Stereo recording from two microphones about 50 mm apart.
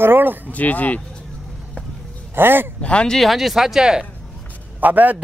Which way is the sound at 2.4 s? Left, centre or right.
Right.